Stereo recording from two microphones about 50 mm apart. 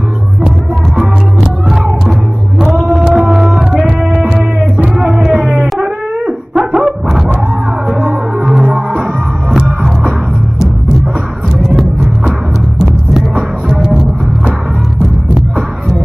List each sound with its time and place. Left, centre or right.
1.4 s music: centre
2.6 s a sound: centre
3.1 s music: centre
3.8 s music: right
5.1 s a sound: centre
5.5 s wail: centre
9.5 s music: centre